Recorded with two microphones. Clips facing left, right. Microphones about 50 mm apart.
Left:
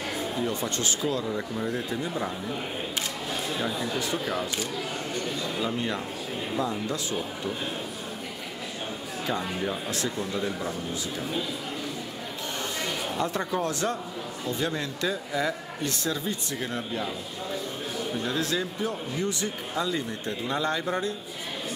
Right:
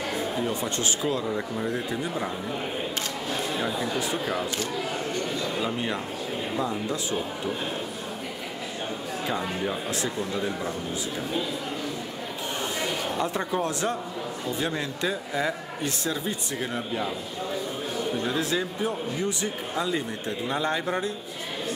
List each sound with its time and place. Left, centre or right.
0.1 s a sound: centre
0.7 s speech: right
1.3 s speech: centre
3.4 s speech: centre
9.3 s speech: centre
12.8 s a sound: centre
13.6 s speech: right; by 18.3 s centre
18.3 s speech: centre